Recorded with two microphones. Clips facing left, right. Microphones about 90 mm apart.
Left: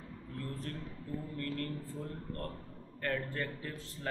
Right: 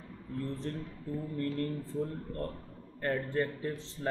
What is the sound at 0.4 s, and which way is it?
A man's voice, 25° right (ahead or behind).